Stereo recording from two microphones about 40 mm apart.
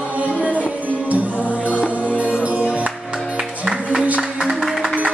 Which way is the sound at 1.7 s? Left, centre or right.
Left.